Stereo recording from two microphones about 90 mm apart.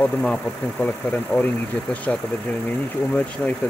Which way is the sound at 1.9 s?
15° left (ahead or behind).